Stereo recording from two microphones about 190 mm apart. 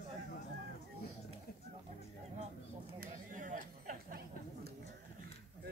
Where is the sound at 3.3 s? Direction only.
45° right (ahead or behind).